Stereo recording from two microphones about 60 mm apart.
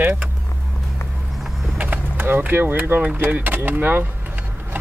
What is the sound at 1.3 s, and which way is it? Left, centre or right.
Vehicle, centre.